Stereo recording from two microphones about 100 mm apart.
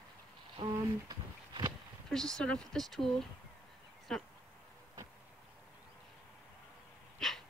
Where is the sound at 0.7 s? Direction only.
40° right (ahead or behind).